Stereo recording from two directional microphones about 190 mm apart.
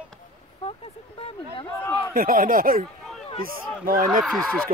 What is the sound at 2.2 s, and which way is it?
Speech, 50° right (ahead or behind).